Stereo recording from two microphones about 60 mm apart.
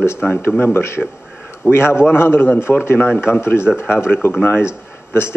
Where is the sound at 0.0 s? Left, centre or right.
Left.